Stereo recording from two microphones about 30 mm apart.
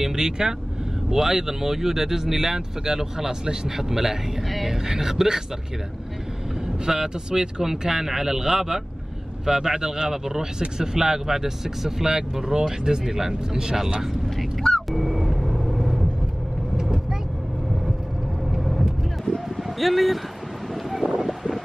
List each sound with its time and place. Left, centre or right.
0.0 s speech: right
6.9 s speech: right
14.9 s vehicle: centre
18.6 s vehicle: centre
19.2 s a sound: centre
20.9 s wind: centre